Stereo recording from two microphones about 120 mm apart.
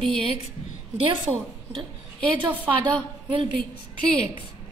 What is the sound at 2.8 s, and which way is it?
Speech, 40° right (ahead or behind).